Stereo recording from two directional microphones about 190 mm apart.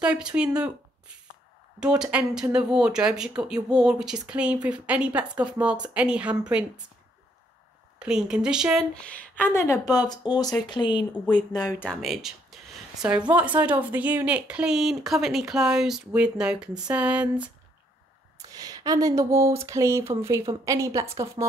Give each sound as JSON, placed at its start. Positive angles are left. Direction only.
{"t": 0.0, "sound": "speech", "side_deg": -5}
{"t": 0.6, "sound": "a sound", "side_deg": -5}
{"t": 1.8, "sound": "speech", "side_deg": -5}
{"t": 8.0, "sound": "speech", "side_deg": -5}
{"t": 11.8, "sound": "speech", "side_deg": 0}
{"t": 18.4, "sound": "speech", "side_deg": -20}